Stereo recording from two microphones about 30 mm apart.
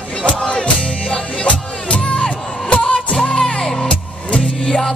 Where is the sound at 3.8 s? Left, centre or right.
Left.